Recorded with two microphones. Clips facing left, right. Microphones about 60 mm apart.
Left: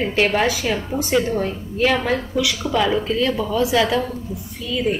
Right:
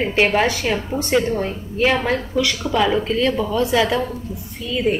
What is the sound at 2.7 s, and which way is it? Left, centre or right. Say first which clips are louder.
A woman's voice: right 1 dB; centre.